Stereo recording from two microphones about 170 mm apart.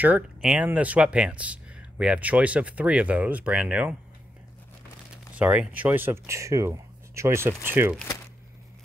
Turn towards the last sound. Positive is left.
turn(degrees=-10)  # may be behind; listen again after turning